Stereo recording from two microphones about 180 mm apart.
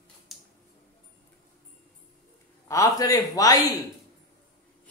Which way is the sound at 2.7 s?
20° left (ahead or behind).